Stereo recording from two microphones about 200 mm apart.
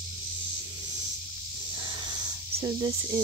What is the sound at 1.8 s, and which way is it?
Snake, 25° right (ahead or behind).